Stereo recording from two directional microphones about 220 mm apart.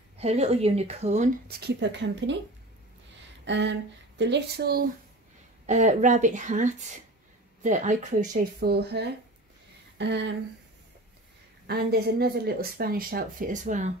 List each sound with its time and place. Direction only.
0.2 s speech: 30° right (ahead or behind)
1.6 s speech: 50° right (ahead or behind)
3.4 s a sound: 55° right (ahead or behind)
4.2 s speech: 50° right (ahead or behind)
5.7 s a woman's voice: 30° right (ahead or behind)
8.3 s speech: 45° right (ahead or behind)
9.9 s a sound: 55° right (ahead or behind)
11.6 s speech: 45° right (ahead or behind)